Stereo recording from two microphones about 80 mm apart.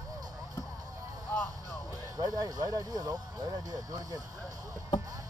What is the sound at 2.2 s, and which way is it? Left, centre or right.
Speech, right.